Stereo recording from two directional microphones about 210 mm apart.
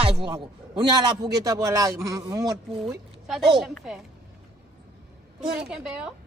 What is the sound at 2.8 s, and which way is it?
A woman's voice, centre (ahead or behind).